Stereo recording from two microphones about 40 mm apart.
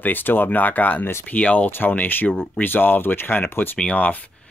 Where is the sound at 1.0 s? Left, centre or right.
Left.